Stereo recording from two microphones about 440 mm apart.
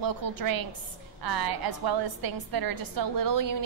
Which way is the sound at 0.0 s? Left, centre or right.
Right.